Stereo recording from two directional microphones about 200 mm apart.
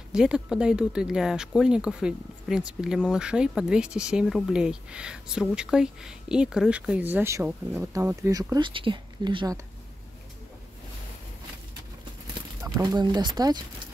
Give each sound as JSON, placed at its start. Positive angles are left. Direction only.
{"t": 0.1, "sound": "speech", "side_deg": -5}
{"t": 12.6, "sound": "speech", "side_deg": -20}